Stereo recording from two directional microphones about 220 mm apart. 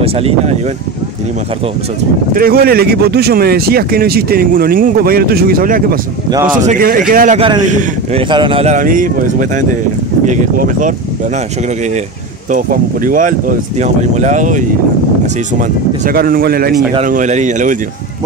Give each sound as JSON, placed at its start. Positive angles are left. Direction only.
{"t": 0.0, "sound": "speech", "side_deg": -25}
{"t": 2.3, "sound": "speech", "side_deg": -45}
{"t": 7.3, "sound": "speech", "side_deg": -20}
{"t": 10.6, "sound": "speech", "side_deg": -35}
{"t": 12.4, "sound": "speech", "side_deg": -40}
{"t": 15.6, "sound": "speech", "side_deg": -40}